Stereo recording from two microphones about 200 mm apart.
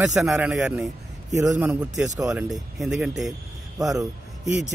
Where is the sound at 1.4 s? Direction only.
10° right (ahead or behind).